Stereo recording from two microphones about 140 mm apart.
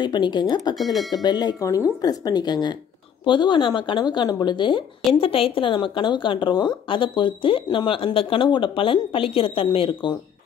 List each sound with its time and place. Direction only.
0.0 s a woman's voice: 30° left (ahead or behind)